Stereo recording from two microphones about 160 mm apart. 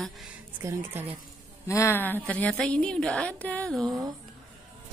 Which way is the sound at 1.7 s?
15° left (ahead or behind).